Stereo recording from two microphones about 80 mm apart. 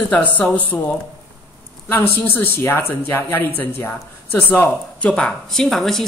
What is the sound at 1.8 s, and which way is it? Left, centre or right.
Speech, left.